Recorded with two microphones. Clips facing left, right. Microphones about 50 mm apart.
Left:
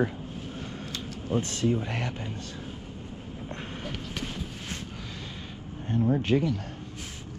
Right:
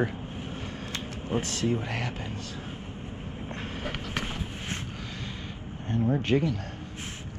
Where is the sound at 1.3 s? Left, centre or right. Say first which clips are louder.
Left 1 dB; right.